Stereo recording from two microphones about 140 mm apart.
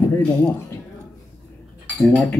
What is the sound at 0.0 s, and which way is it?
Speech, 15° left (ahead or behind).